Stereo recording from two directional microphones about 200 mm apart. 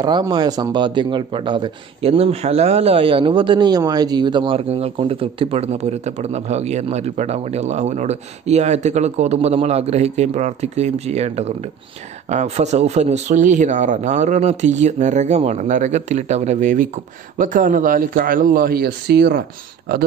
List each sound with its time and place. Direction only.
0.0 s speech: 20° right (ahead or behind); by 19.4 s 55° right (ahead or behind)